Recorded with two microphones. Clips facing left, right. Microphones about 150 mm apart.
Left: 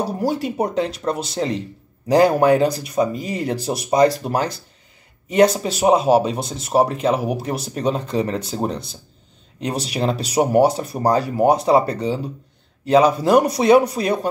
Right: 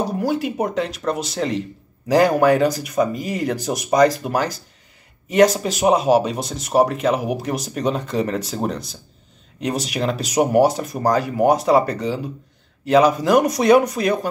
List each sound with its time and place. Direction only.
0.2 s speech: 35° left (ahead or behind)